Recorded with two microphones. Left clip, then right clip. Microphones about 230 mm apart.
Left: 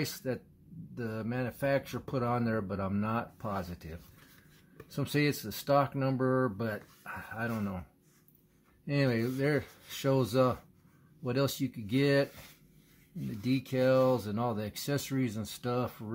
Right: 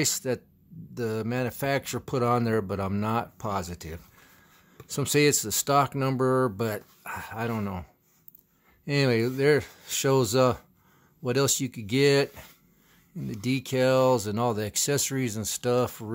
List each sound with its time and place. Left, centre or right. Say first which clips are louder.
0.0 s speech: right 8 dB; right
8.8 s speech: right 6 dB; right
13.3 s speech: right 4 dB; right